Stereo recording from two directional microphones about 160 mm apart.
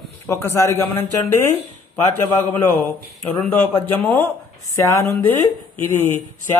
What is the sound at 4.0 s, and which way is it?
A man's voice, 15° left (ahead or behind).